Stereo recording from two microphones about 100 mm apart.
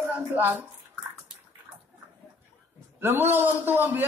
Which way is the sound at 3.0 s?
20° right (ahead or behind).